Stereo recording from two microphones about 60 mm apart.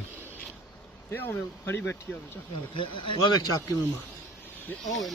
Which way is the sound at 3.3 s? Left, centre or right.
Left.